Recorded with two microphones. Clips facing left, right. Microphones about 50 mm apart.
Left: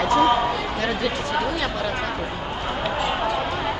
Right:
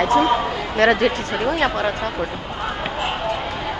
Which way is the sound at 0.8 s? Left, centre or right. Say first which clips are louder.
Right 13 dB; right.